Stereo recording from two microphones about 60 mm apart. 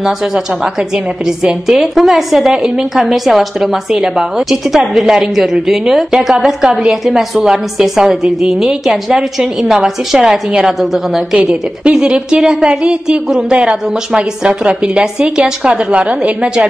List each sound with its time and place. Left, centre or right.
0.0 s a woman's voice: centre
11.3 s a woman's voice: centre